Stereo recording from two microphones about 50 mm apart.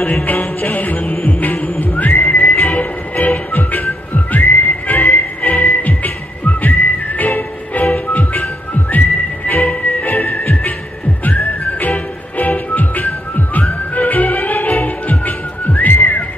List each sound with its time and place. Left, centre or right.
0.0 s music: left
9.5 s music: left